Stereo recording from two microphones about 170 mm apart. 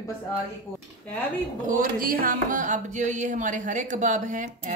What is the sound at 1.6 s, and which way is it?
Music, 55° right (ahead or behind).